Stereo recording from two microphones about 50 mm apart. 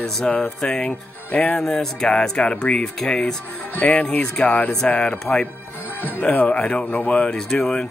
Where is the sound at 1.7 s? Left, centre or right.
Centre.